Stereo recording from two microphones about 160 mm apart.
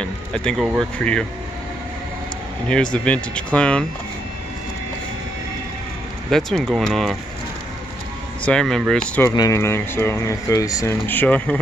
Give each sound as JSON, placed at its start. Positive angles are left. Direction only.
{"t": 0.0, "sound": "speech", "side_deg": 5}
{"t": 2.7, "sound": "speech", "side_deg": 5}
{"t": 6.3, "sound": "speech", "side_deg": 5}
{"t": 8.5, "sound": "speech", "side_deg": 5}
{"t": 9.3, "sound": "speech", "side_deg": 20}